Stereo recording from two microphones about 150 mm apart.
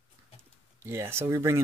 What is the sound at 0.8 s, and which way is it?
Speech, 15° right (ahead or behind).